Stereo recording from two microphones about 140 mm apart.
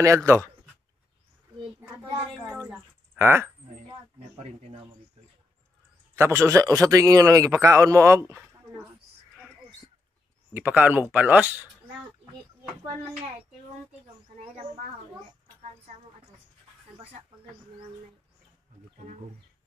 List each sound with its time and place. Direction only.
0.0 s a man's voice: 20° right (ahead or behind)
3.2 s speech: 15° right (ahead or behind)
4.4 s speech: 50° right (ahead or behind)
6.1 s a man's voice: 20° right (ahead or behind)
10.5 s speech: 15° right (ahead or behind)